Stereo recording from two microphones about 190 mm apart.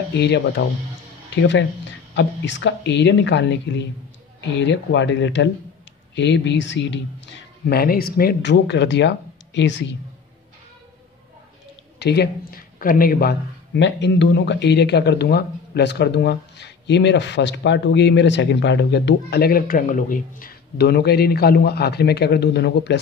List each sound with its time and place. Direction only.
0.1 s speech: 60° left (ahead or behind)
2.1 s speech: 70° left (ahead or behind)
12.0 s speech: 60° left (ahead or behind)